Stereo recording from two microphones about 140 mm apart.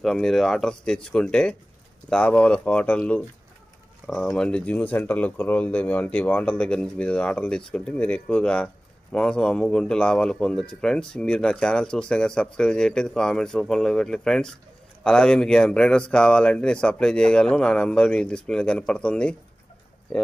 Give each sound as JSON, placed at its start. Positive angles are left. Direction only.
{"t": 0.0, "sound": "a man's voice", "side_deg": 0}